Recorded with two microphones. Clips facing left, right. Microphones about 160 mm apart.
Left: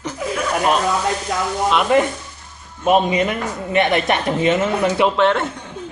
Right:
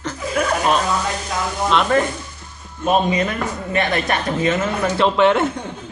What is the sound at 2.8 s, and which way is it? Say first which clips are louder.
A man's voice: left 2 dB; 20° left (ahead or behind).